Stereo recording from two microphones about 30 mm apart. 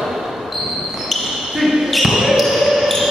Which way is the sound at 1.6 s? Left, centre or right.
Centre.